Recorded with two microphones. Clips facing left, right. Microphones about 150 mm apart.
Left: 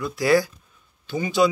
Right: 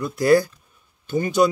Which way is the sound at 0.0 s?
45° right (ahead or behind).